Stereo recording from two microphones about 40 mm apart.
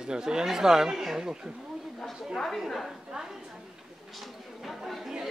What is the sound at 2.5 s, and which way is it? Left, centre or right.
Speech, centre.